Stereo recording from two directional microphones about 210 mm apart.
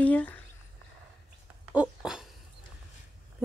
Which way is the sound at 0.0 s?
5° left (ahead or behind).